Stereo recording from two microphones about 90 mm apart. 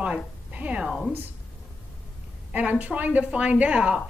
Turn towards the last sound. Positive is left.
turn(degrees=-15)  # may be behind; listen again after turning